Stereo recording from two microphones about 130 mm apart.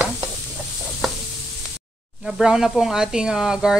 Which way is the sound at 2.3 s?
Centre (ahead or behind).